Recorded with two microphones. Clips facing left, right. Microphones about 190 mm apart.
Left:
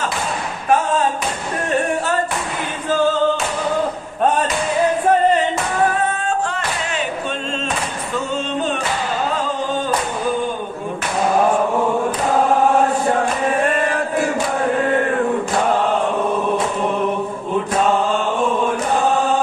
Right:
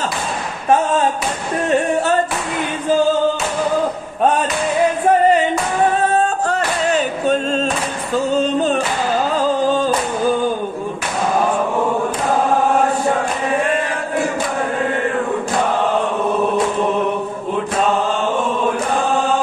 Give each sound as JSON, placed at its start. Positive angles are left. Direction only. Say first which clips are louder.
{"t": 6.1, "sound": "music", "louder": "right 5 dB", "side_deg": -40}